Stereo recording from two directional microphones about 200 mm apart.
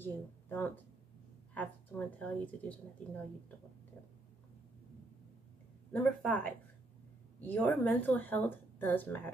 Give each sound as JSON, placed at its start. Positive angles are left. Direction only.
{"t": 0.0, "sound": "a woman's voice", "side_deg": 10}
{"t": 5.9, "sound": "a woman's voice", "side_deg": 5}